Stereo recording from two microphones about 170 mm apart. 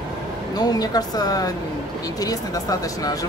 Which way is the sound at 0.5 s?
20° left (ahead or behind).